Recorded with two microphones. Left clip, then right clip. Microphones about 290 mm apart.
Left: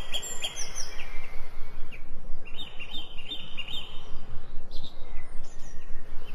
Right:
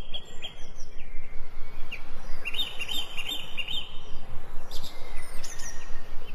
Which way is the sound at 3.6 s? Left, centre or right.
Centre.